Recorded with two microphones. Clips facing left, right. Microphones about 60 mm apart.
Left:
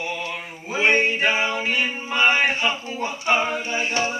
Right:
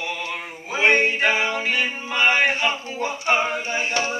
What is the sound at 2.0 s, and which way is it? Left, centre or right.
Male singing, right.